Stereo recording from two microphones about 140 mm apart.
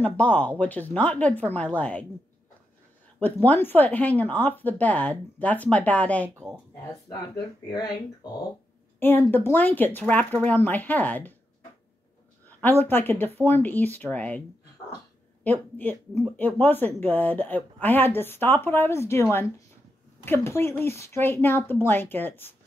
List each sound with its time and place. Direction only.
0.0 s speech: 10° left (ahead or behind)
3.2 s speech: 10° left (ahead or behind)
9.0 s speech: 15° left (ahead or behind)
12.4 s speech: 10° left (ahead or behind)
15.4 s speech: 10° left (ahead or behind)
20.2 s speech: 15° left (ahead or behind)